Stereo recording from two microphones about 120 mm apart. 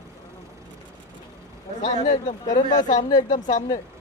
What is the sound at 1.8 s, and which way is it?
Speech, 80° left.